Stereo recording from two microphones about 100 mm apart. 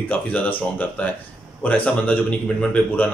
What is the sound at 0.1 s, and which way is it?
A man's voice, 15° left (ahead or behind).